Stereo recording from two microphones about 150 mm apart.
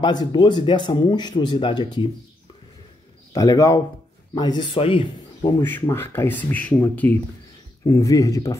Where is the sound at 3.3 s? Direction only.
25° left (ahead or behind).